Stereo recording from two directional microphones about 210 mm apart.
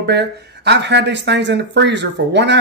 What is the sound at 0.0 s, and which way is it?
Speech, 50° right (ahead or behind).